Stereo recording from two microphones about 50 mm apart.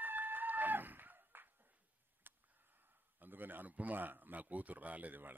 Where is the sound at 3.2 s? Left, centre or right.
Right.